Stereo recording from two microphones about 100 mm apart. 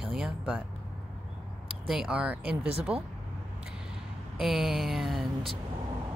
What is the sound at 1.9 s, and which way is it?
A woman's voice, 5° right (ahead or behind).